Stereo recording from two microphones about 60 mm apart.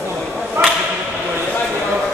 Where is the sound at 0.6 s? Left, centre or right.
Right.